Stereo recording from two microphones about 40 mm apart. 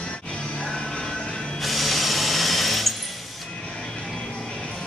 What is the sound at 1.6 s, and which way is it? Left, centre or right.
Tools, centre.